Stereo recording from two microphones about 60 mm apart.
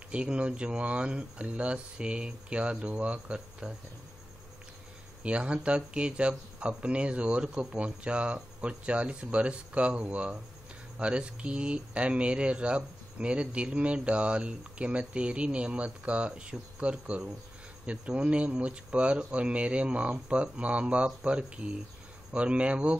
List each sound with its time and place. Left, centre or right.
0.1 s speech: centre
5.2 s speech: centre